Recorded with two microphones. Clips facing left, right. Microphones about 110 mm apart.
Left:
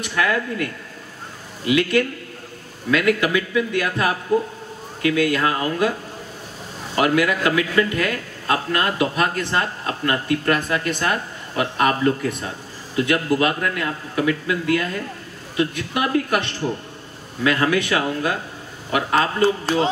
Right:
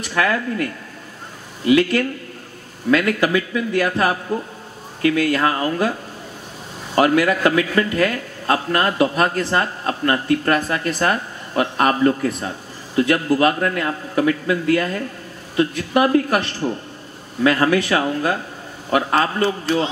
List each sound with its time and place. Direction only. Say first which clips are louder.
0.0 s a man's voice: right 2 dB; 40° right (ahead or behind)
1.7 s a man's voice: right 3 dB; 40° right (ahead or behind)
7.0 s a man's voice: right 3 dB; 40° right (ahead or behind)